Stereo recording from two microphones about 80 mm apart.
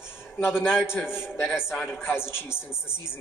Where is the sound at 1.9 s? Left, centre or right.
Left.